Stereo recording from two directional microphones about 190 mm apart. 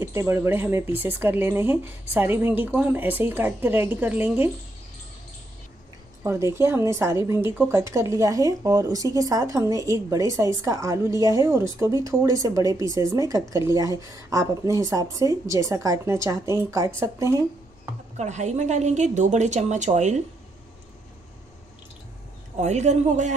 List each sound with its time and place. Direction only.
0.0 s a woman's voice: 15° right (ahead or behind)
6.2 s a woman's voice: 15° right (ahead or behind)
18.1 s a woman's voice: 40° right (ahead or behind)
22.6 s a woman's voice: 40° right (ahead or behind)